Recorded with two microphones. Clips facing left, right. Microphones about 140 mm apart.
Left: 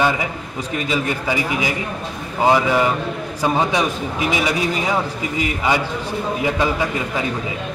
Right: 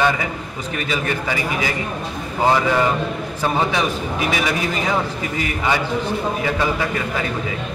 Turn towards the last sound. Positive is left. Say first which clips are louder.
# left 1 dB
turn(degrees=15)  # may be behind; listen again after turning